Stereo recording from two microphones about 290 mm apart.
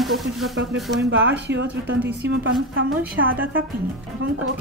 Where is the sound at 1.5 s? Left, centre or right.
Right.